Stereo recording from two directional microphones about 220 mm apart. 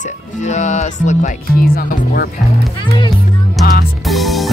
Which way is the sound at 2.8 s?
20° left (ahead or behind).